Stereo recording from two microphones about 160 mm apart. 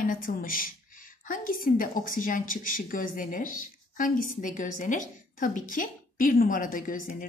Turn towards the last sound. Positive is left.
turn(degrees=60)  # may be behind; listen again after turning